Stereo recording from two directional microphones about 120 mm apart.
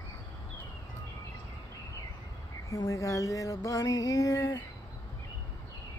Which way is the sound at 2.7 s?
30° left (ahead or behind).